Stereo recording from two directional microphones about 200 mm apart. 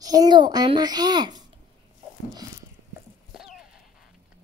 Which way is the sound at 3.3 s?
5° right (ahead or behind).